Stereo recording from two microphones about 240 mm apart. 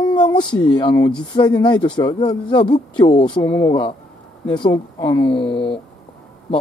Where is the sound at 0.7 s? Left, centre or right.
Centre.